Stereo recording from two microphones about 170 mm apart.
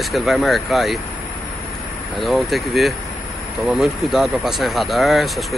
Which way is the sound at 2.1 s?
Centre (ahead or behind).